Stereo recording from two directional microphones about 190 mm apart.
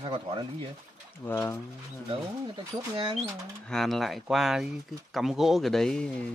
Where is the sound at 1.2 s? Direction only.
10° left (ahead or behind).